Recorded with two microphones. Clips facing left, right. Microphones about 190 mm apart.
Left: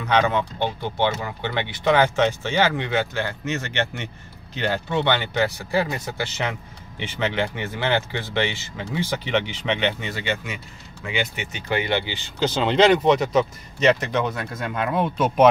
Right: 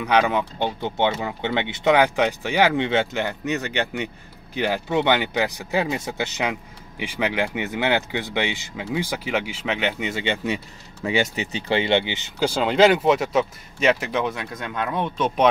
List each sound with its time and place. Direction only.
0.0 s speech: 10° right (ahead or behind)
2.8 s speech: 25° right (ahead or behind); by 10.0 s 5° right (ahead or behind)
10.0 s speech: 20° right (ahead or behind)
11.1 s speech: 35° right (ahead or behind); by 15.5 s 5° left (ahead or behind)